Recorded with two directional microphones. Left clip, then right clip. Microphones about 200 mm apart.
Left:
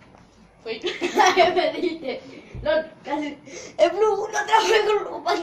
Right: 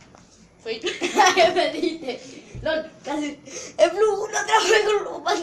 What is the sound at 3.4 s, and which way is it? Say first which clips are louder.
Speech: right 1 dB; 5° left (ahead or behind).